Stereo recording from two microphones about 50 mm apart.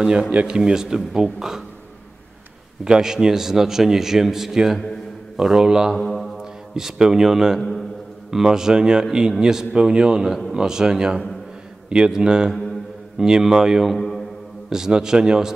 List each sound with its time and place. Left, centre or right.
0.0 s a man's voice: centre
2.8 s a man's voice: centre
5.9 s a man's voice: centre
13.9 s a sound: centre
14.7 s a man's voice: centre